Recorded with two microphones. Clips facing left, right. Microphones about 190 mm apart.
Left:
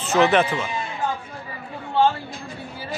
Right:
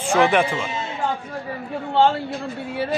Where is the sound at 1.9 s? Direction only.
70° right (ahead or behind).